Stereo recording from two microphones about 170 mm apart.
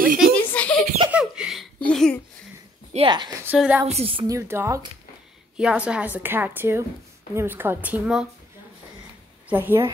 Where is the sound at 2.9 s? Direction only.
25° right (ahead or behind).